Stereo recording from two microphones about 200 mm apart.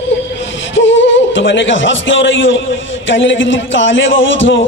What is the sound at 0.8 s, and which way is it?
A man's voice, 70° left (ahead or behind).